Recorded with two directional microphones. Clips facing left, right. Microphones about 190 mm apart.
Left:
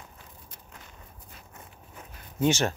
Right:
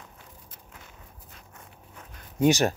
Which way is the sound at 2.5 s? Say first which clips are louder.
Right 3 dB; 35° right (ahead or behind).